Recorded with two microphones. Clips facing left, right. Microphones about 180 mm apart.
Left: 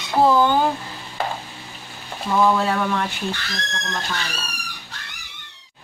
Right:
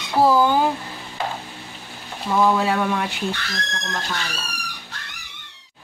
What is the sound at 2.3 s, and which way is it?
Speech, 10° right (ahead or behind).